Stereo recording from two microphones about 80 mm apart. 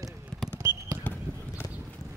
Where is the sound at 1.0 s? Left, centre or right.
Left.